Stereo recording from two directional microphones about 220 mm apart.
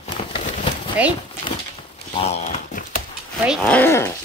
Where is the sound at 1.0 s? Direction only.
5° right (ahead or behind).